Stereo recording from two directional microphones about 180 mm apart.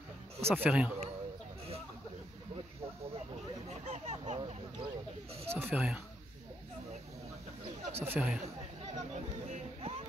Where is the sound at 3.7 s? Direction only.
40° right (ahead or behind).